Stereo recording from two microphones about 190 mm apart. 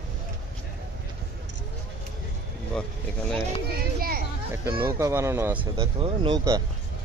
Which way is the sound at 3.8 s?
50° right (ahead or behind).